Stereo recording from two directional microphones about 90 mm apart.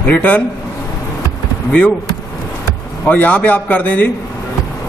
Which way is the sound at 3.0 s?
20° left (ahead or behind).